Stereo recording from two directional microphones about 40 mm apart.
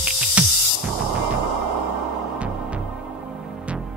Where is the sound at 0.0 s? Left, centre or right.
Right.